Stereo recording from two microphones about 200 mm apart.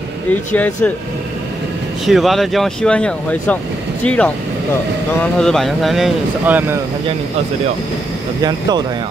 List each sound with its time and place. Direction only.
0.6 s speech: 5° left (ahead or behind)
2.0 s speech: centre (ahead or behind)
8.4 s speech: 20° right (ahead or behind)